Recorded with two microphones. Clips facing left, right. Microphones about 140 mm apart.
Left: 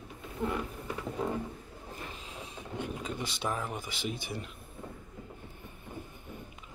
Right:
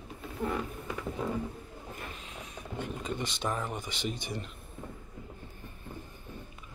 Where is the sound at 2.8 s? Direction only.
5° left (ahead or behind).